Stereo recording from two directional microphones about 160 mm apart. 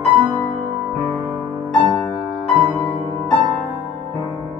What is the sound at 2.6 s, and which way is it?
Music, 20° right (ahead or behind).